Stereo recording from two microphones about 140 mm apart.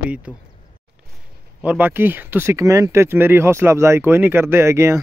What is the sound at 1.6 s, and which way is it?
Speech, 10° right (ahead or behind).